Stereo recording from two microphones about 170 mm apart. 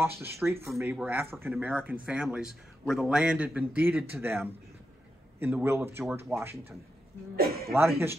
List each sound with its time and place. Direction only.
0.0 s a man's voice: 15° right (ahead or behind)
7.3 s speech: 65° right (ahead or behind)